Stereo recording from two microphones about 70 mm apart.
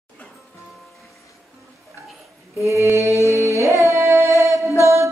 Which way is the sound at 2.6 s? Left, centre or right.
Right.